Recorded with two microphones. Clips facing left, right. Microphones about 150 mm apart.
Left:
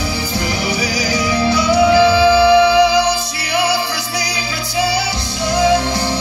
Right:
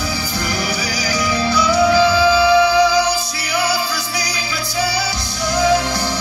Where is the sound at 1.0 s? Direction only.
20° left (ahead or behind).